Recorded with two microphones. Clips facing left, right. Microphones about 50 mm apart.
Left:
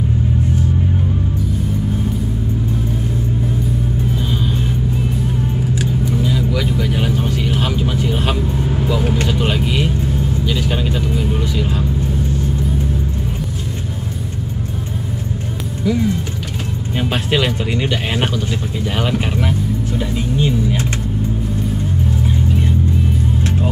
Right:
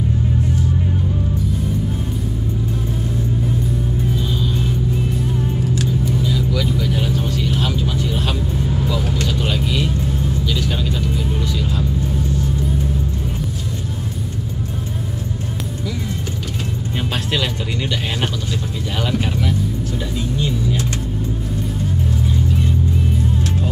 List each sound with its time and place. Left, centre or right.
5.8 s vehicle: left
17.1 s music: centre
18.9 s vehicle: left